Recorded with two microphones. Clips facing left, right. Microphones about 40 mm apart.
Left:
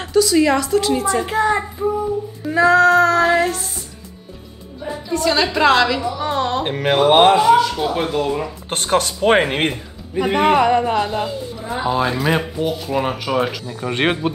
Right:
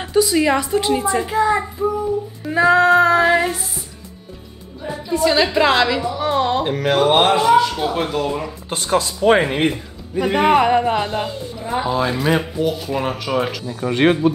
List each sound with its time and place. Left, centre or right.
0.1 s music: centre
1.2 s speech: left
1.8 s speech: centre
2.4 s music: centre
5.1 s a woman's voice: centre
6.6 s speech: left
7.0 s speech: centre
8.6 s speech: left
10.3 s a woman's voice: centre
11.8 s speech: centre
13.7 s speech: left